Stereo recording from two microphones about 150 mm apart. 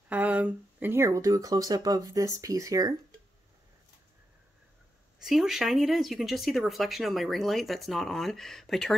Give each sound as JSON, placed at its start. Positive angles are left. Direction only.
{"t": 0.1, "sound": "speech", "side_deg": -10}
{"t": 5.2, "sound": "speech", "side_deg": 0}